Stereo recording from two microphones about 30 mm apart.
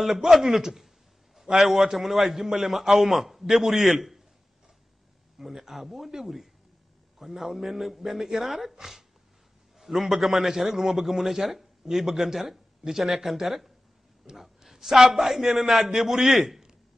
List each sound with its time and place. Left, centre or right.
0.0 s a man's voice: centre
5.4 s a man's voice: centre
9.8 s a man's voice: centre